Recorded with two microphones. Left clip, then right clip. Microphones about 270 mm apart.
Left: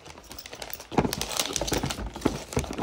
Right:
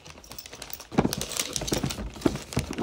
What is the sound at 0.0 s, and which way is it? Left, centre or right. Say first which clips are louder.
Typing: left 1 dB; centre.